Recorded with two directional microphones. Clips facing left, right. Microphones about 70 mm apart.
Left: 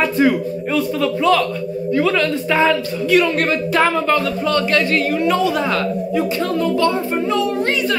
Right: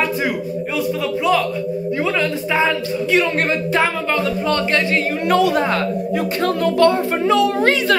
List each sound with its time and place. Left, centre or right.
0.0 s a woman's voice: centre; by 5.2 s right
5.2 s speech: right
6.4 s speech: right
7.2 s a child's voice: right